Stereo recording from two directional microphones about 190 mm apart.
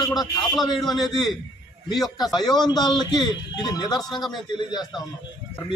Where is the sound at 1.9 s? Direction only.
Centre (ahead or behind).